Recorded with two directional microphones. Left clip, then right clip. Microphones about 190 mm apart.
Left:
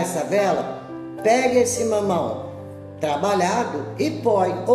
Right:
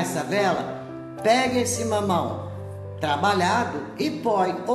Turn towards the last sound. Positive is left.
turn(degrees=-15)  # may be behind; listen again after turning